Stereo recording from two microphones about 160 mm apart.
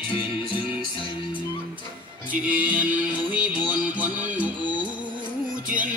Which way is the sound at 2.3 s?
10° right (ahead or behind).